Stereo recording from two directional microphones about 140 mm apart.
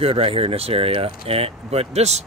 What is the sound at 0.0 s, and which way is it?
Speech, 45° right (ahead or behind).